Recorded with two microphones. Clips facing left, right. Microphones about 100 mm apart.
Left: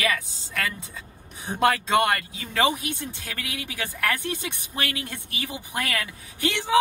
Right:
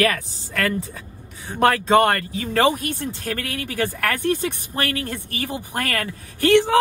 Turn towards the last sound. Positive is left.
turn(degrees=-55)  # may be behind; listen again after turning